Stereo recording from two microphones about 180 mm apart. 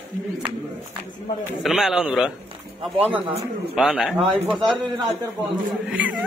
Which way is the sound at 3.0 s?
35° right (ahead or behind).